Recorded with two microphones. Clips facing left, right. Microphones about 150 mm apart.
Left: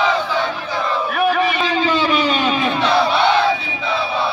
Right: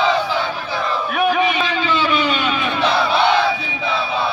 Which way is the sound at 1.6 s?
35° left (ahead or behind).